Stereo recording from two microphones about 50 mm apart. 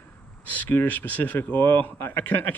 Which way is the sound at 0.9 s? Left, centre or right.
Left.